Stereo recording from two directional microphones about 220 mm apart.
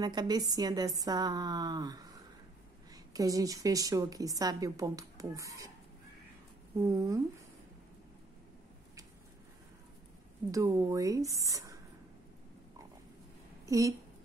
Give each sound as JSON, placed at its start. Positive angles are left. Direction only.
{"t": 0.0, "sound": "a woman's voice", "side_deg": -20}
{"t": 6.8, "sound": "a woman's voice", "side_deg": -15}
{"t": 10.5, "sound": "a woman's voice", "side_deg": -15}
{"t": 13.7, "sound": "speech", "side_deg": -15}